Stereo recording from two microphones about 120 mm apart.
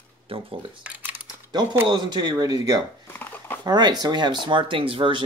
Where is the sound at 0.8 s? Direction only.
10° right (ahead or behind).